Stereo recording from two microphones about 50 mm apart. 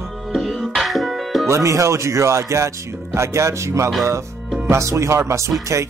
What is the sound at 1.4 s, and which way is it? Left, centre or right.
Speech, right.